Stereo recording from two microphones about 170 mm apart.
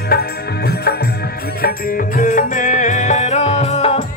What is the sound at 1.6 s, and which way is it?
Music, 60° left (ahead or behind).